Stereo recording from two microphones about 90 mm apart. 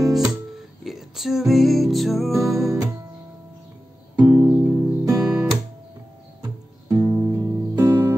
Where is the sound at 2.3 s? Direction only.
35° right (ahead or behind).